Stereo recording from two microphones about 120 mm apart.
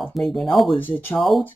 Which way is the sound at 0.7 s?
15° left (ahead or behind).